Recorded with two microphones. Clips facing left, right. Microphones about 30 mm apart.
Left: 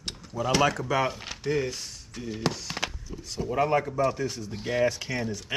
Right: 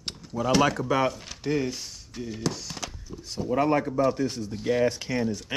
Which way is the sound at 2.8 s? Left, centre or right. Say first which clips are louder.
Left 5 dB; left.